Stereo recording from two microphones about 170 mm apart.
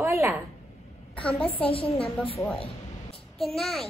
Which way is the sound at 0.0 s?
15° right (ahead or behind).